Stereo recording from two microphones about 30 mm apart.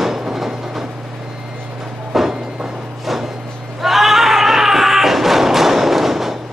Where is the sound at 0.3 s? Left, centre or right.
Centre.